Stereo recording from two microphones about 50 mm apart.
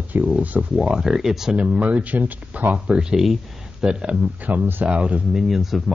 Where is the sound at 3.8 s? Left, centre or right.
Right.